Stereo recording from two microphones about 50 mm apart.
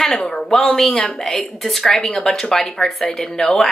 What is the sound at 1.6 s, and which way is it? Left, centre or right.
A woman's voice, centre.